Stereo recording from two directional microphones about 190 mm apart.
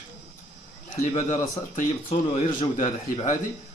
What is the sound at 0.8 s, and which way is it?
Speech, 40° left (ahead or behind).